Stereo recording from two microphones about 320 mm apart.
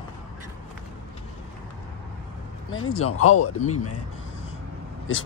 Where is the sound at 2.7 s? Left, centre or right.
Left.